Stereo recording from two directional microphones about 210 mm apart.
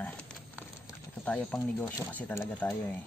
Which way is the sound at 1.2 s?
5° left (ahead or behind).